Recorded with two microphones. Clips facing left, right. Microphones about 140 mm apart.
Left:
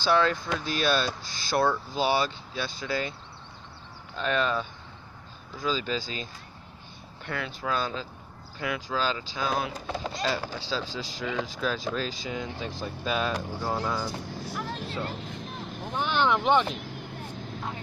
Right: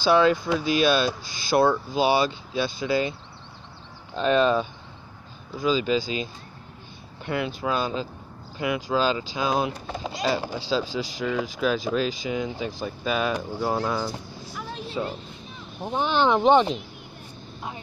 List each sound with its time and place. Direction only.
0.0 s speech: 15° right (ahead or behind)
4.2 s speech: 20° right (ahead or behind)
5.6 s speech: 10° right (ahead or behind)
7.2 s speech: 15° right (ahead or behind)
14.5 s vehicle: centre (ahead or behind)
15.2 s vehicle: 80° left
15.9 s speech: 30° right (ahead or behind)